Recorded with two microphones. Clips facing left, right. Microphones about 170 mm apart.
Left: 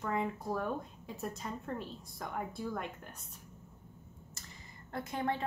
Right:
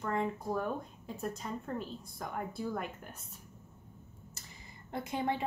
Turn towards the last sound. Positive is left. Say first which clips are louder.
# right 1 dB
turn(degrees=-15)  # may be behind; listen again after turning